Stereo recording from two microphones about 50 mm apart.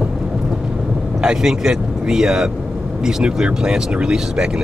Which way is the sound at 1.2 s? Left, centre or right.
Centre.